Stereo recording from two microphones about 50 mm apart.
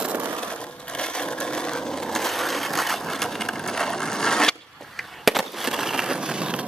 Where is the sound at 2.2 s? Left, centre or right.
Centre.